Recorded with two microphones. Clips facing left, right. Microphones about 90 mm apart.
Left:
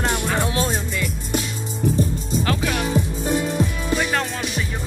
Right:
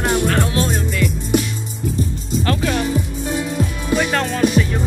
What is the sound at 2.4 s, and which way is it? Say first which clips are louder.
Music: right 5 dB; 5° left (ahead or behind).